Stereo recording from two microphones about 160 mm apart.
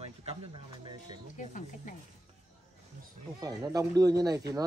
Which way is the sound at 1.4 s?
50° left (ahead or behind).